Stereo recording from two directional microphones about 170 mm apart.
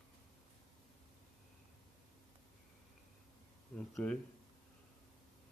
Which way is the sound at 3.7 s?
5° left (ahead or behind).